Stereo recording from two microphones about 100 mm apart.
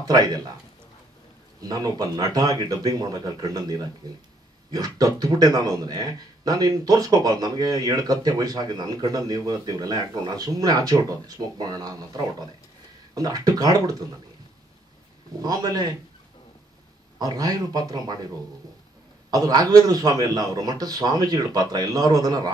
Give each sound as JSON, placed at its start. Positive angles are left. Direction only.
{"t": 0.0, "sound": "speech", "side_deg": -40}
{"t": 1.6, "sound": "speech", "side_deg": -40}
{"t": 15.4, "sound": "speech", "side_deg": -40}
{"t": 17.2, "sound": "speech", "side_deg": -40}
{"t": 19.3, "sound": "speech", "side_deg": -40}